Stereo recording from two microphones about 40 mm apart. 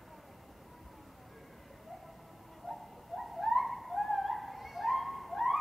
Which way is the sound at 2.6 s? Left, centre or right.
Centre.